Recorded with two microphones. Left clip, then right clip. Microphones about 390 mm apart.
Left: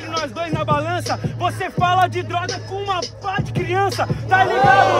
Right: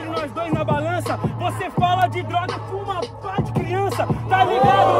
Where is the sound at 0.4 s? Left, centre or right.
Centre.